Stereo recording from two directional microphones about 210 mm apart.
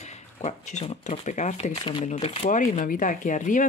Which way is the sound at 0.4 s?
30° left (ahead or behind).